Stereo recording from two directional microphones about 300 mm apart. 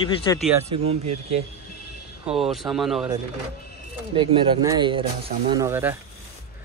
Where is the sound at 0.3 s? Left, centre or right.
Centre.